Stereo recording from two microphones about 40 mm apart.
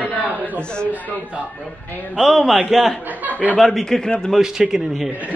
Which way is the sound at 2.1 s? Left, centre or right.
Centre.